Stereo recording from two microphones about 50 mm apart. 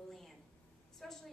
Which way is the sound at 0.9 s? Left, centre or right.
Centre.